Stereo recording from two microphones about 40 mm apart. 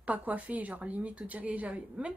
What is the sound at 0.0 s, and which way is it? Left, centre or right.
Speech, right.